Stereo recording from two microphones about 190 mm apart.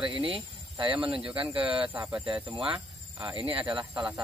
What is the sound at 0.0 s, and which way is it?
Speech, 25° right (ahead or behind).